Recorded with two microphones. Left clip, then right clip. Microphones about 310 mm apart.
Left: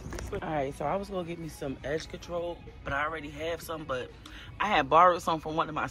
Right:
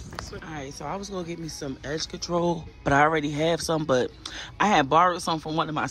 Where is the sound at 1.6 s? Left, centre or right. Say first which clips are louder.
Right 1 dB; centre.